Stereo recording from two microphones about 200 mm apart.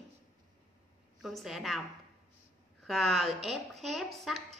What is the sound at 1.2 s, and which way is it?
Speech, centre (ahead or behind).